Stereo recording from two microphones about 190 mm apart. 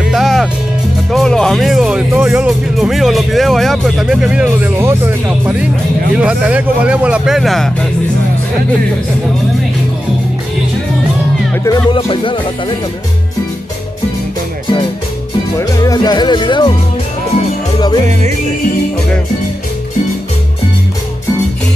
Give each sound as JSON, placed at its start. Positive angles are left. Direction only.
{"t": 0.1, "sound": "music", "side_deg": 0}
{"t": 1.1, "sound": "speech", "side_deg": 5}
{"t": 11.5, "sound": "speech", "side_deg": 20}
{"t": 15.8, "sound": "speech", "side_deg": 20}